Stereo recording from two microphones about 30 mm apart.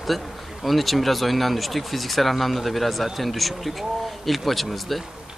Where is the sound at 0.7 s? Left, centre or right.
Centre.